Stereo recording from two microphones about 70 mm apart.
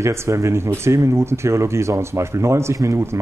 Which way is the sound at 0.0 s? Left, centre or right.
Right.